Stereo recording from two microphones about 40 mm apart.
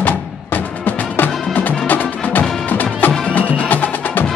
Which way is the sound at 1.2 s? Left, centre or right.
Left.